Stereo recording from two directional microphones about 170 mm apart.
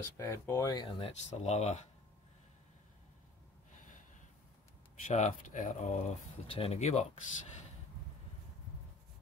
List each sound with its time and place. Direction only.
0.2 s speech: 15° left (ahead or behind); by 1.9 s 40° left (ahead or behind)
5.0 s speech: 45° left (ahead or behind)